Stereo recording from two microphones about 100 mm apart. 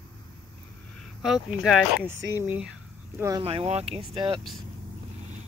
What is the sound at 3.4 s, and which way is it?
Speech, 80° right.